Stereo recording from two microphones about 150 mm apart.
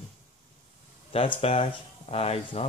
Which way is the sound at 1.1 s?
40° left (ahead or behind).